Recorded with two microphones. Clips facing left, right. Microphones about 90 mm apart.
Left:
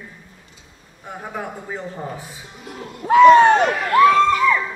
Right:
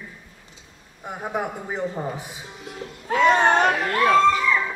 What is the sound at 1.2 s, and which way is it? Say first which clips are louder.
Speech: right 3 dB; 15° right (ahead or behind).